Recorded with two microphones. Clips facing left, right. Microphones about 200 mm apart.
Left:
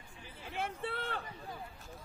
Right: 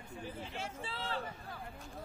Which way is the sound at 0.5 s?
60° left (ahead or behind).